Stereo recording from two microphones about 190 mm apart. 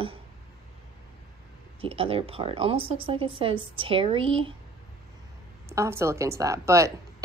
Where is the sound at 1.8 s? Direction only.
30° right (ahead or behind).